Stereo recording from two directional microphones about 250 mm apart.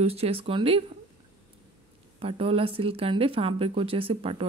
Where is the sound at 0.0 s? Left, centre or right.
Right.